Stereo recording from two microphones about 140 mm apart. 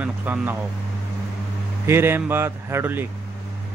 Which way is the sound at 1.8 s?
15° right (ahead or behind).